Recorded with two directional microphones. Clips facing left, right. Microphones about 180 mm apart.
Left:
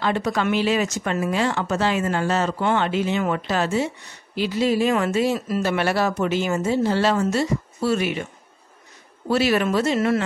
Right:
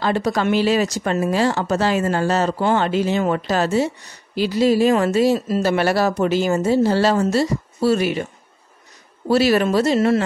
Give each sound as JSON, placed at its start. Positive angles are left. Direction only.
{"t": 0.0, "sound": "speech", "side_deg": -35}
{"t": 9.3, "sound": "speech", "side_deg": -35}